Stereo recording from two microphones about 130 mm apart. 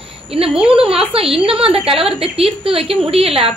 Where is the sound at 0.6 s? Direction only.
45° right (ahead or behind).